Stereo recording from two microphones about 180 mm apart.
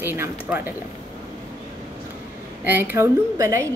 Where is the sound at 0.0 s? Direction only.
10° right (ahead or behind).